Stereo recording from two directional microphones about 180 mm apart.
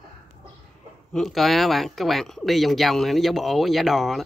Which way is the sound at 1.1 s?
Centre (ahead or behind).